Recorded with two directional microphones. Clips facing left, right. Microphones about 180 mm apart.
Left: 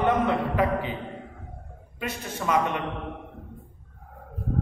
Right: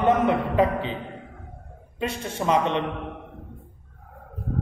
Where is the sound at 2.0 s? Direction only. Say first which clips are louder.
Right 4 dB; 30° right (ahead or behind).